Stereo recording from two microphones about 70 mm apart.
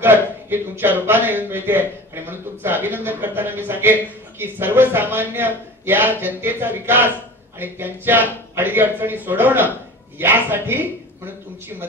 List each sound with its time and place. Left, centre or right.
0.0 s a man's voice: right